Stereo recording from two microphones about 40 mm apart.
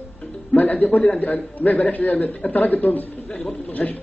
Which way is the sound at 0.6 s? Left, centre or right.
Left.